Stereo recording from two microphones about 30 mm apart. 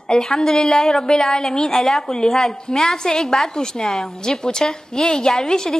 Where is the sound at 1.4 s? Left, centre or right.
Centre.